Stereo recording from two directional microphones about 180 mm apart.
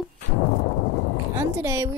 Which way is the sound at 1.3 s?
15° right (ahead or behind).